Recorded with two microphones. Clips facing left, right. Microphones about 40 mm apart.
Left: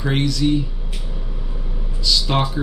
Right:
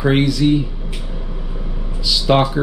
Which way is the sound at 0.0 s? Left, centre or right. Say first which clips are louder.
Right 5 dB; centre.